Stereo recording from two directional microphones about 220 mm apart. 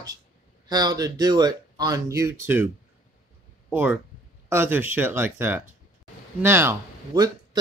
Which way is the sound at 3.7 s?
10° right (ahead or behind).